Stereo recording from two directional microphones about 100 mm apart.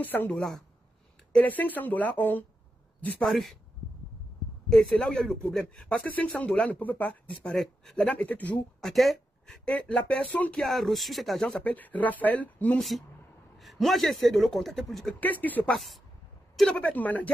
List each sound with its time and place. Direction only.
0.0 s a woman's voice: 20° left (ahead or behind)
0.4 s speech: centre (ahead or behind)
1.3 s speech: 15° left (ahead or behind)
3.2 s speech: centre (ahead or behind)
4.6 s speech: 5° left (ahead or behind)
7.5 s speech: centre (ahead or behind)
8.1 s speech: 15° left (ahead or behind)
8.8 s speech: centre (ahead or behind)
9.7 s speech: 10° left (ahead or behind)
10.5 s speech: centre (ahead or behind)
11.6 s speech: 15° left (ahead or behind)
12.7 s speech: centre (ahead or behind)
15.1 s speech: 15° left (ahead or behind)
15.7 s speech: centre (ahead or behind); by 17.3 s 15° left (ahead or behind)